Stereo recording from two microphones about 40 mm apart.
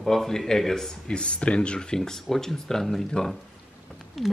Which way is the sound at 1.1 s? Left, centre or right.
Left.